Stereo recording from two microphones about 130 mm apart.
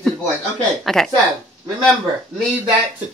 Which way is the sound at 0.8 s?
Centre (ahead or behind).